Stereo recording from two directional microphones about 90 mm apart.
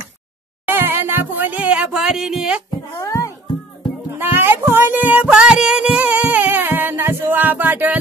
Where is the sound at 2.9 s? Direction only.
40° left (ahead or behind).